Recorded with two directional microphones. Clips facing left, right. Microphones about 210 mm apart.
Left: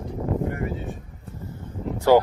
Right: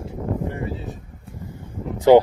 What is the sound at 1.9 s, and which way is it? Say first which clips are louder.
Speech: right 5 dB; 15° right (ahead or behind).